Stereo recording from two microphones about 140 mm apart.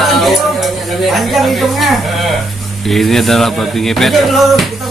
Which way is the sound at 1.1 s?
Centre (ahead or behind).